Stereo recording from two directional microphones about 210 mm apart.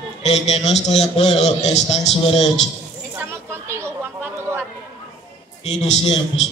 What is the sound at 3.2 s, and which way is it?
Chatter, 10° right (ahead or behind).